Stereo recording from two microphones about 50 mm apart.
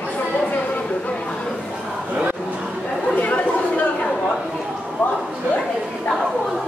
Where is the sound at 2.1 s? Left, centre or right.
Right.